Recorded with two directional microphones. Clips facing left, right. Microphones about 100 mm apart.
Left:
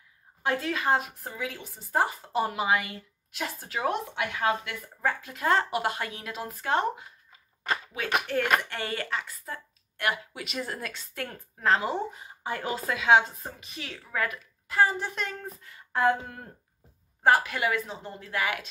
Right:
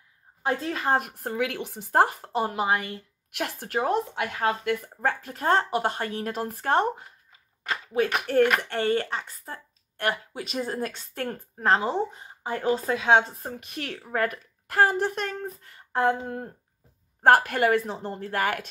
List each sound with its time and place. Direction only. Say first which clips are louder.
0.5 s speech: right 1 dB; 35° right (ahead or behind)
0.9 s speech: right 4 dB; 60° right (ahead or behind)
2.3 s speech: even; 35° right (ahead or behind)
3.3 s speech: right 4 dB; 65° right (ahead or behind)
3.8 s speech: right 2 dB; 40° right (ahead or behind)
8.6 s speech: right 8 dB; 35° right (ahead or behind)
13.6 s speech: right 6 dB; 55° right (ahead or behind)
14.0 s speech: right 4 dB; 45° right (ahead or behind)
16.0 s speech: right 1 dB; 25° right (ahead or behind)
17.2 s a woman's voice: right 4 dB; 55° right (ahead or behind)